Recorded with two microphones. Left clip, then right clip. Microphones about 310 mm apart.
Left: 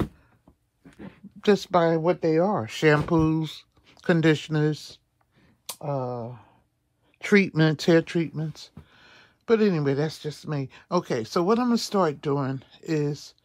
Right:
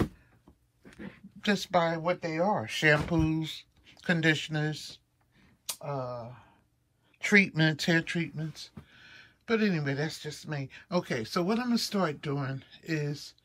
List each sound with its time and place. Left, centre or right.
0.9 s speech: centre
7.3 s speech: centre